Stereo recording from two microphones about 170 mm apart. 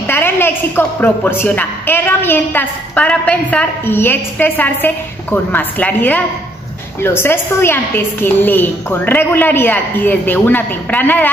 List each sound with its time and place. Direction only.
0.0 s a woman's voice: 10° left (ahead or behind)